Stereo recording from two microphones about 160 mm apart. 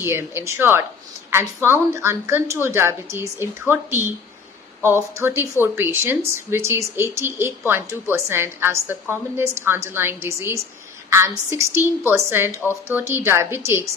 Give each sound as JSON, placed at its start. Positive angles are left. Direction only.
{"t": 0.0, "sound": "speech", "side_deg": -15}
{"t": 5.1, "sound": "speech", "side_deg": -15}